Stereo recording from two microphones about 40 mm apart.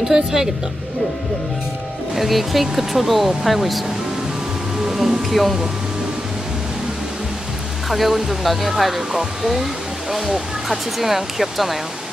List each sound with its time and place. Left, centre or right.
0.1 s speech: centre
2.1 s speech: centre
4.8 s speech: centre
7.9 s speech: centre